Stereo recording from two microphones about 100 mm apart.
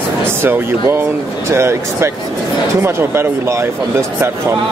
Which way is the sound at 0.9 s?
25° right (ahead or behind).